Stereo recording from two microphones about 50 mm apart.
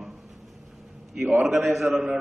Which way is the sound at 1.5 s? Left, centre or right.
Centre.